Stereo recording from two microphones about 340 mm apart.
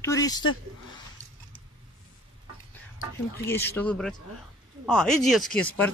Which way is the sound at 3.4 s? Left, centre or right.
Centre.